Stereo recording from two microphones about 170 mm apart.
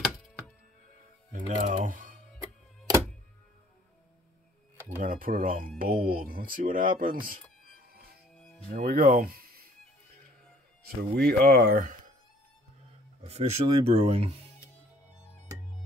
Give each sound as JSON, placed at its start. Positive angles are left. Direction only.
{"t": 1.5, "sound": "typing", "side_deg": -50}
{"t": 5.0, "sound": "speech", "side_deg": -55}
{"t": 8.4, "sound": "music", "side_deg": 5}
{"t": 8.7, "sound": "speech", "side_deg": -55}
{"t": 11.1, "sound": "speech", "side_deg": -65}
{"t": 13.3, "sound": "speech", "side_deg": -40}